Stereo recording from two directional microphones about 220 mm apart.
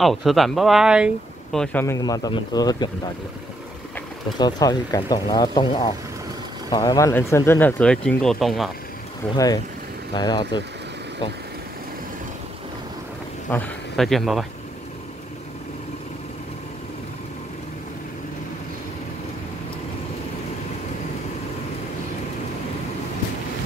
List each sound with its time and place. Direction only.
0.0 s speech: centre (ahead or behind); by 2.9 s 15° left (ahead or behind)
4.4 s speech: 20° left (ahead or behind); by 8.7 s centre (ahead or behind)
10.1 s speech: 20° left (ahead or behind)
13.5 s speech: 5° left (ahead or behind)